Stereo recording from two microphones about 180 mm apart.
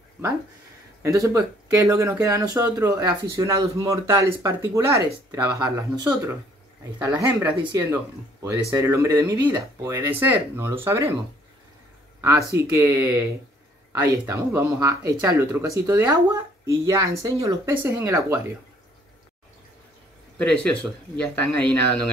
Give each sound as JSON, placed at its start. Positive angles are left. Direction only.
{"t": 1.0, "sound": "speech", "side_deg": -15}
{"t": 7.0, "sound": "speech", "side_deg": -10}
{"t": 7.6, "sound": "speech", "side_deg": -20}
{"t": 12.2, "sound": "speech", "side_deg": -15}
{"t": 20.3, "sound": "speech", "side_deg": 5}